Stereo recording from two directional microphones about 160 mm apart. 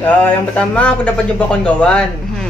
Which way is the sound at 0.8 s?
5° left (ahead or behind).